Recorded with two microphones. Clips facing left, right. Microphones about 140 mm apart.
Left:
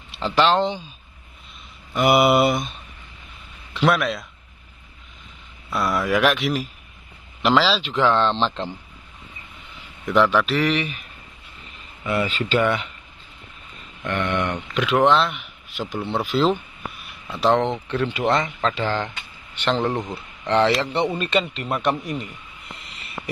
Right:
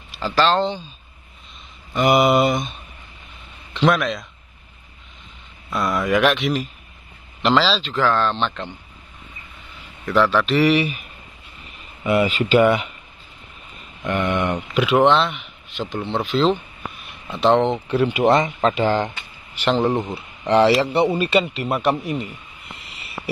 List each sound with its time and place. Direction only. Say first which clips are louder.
0.3 s speech: even; 15° left (ahead or behind)
2.0 s speech: right 1 dB; 10° left (ahead or behind)
5.7 s speech: right 1 dB; centre (ahead or behind); by 8.7 s 30° left (ahead or behind)
10.0 s speech: even; 15° left (ahead or behind)
10.5 s speech: right 5 dB; 5° right (ahead or behind)
14.0 s speech: right 3 dB; 10° right (ahead or behind)
19.6 s speech: right 3 dB; 5° right (ahead or behind)
22.9 s a sound: right 3 dB; 5° right (ahead or behind)